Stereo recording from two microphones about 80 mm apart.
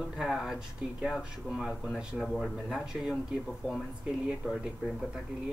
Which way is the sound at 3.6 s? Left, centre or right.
Centre.